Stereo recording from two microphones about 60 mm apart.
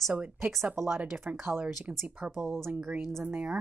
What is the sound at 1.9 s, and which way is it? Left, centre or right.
Speech, right.